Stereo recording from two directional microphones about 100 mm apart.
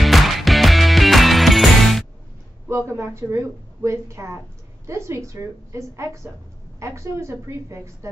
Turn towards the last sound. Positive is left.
turn(degrees=-30)  # may be behind; listen again after turning